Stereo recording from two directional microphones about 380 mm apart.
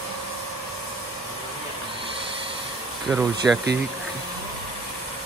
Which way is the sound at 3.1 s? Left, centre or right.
Centre.